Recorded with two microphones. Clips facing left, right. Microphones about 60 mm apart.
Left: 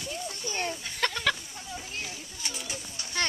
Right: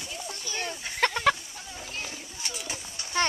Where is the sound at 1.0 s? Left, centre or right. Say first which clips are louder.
Right 5 dB; right.